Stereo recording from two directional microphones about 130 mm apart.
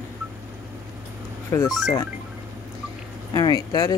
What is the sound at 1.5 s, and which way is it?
Speech, 25° left (ahead or behind).